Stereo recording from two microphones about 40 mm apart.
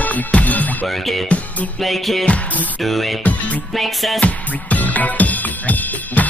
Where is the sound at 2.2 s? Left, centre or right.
Left.